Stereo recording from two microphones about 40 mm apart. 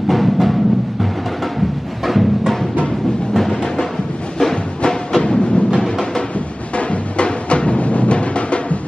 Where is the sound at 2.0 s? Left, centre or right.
Centre.